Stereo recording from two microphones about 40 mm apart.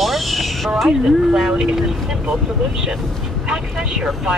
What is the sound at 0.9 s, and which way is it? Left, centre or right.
Speech, right.